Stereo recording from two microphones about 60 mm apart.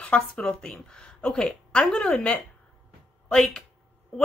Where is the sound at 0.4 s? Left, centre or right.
Centre.